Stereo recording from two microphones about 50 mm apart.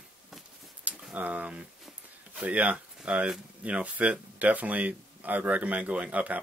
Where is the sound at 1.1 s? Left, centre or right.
Right.